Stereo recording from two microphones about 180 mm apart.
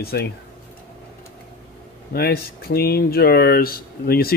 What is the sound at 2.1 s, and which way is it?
Speech, 60° left (ahead or behind).